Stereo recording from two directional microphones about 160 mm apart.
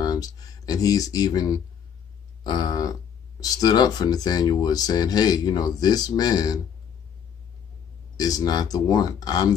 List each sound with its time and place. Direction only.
0.0 s speech: 25° left (ahead or behind)
8.2 s speech: 25° left (ahead or behind)